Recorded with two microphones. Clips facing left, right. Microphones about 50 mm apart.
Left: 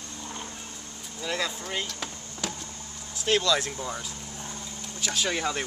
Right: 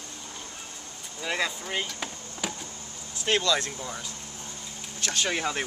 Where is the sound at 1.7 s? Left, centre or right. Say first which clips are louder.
Right 1 dB; centre.